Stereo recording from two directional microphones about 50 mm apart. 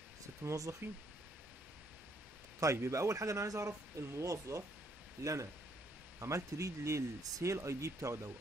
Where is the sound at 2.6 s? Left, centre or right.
Right.